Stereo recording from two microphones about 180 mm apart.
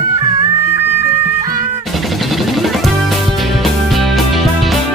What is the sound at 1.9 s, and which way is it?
Music, centre (ahead or behind).